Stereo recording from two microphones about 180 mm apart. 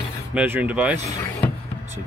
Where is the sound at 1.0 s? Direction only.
20° left (ahead or behind).